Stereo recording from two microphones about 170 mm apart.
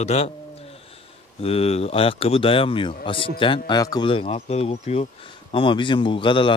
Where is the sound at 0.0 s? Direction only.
40° left (ahead or behind).